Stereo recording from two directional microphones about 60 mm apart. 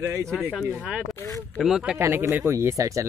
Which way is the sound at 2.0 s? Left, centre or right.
Right.